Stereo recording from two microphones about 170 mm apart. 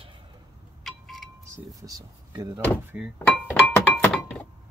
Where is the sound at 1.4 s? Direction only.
20° right (ahead or behind).